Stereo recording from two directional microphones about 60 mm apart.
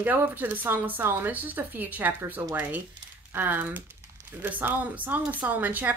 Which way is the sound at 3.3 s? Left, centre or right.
Right.